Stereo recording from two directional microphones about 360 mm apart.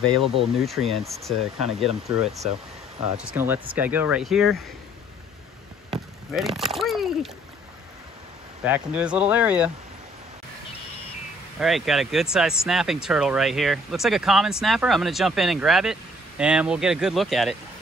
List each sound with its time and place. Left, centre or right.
0.3 s speech: centre
5.9 s a sound: centre
8.6 s speech: centre
11.6 s speech: centre